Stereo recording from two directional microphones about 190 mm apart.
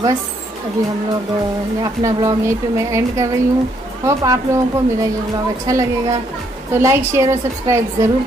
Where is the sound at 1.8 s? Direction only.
15° right (ahead or behind).